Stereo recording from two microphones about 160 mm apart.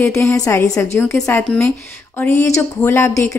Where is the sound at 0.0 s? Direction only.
15° left (ahead or behind).